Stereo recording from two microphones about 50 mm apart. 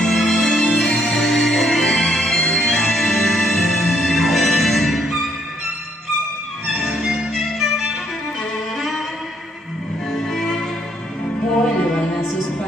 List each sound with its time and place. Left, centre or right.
0.0 s music: centre
0.5 s music: left
1.1 s music: centre
2.3 s music: left; by 5.1 s centre
6.7 s music: centre
10.1 s music: centre
11.6 s music: centre